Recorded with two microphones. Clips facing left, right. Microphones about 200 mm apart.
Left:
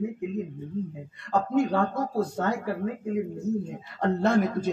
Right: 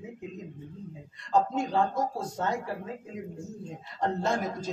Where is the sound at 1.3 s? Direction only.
60° left (ahead or behind).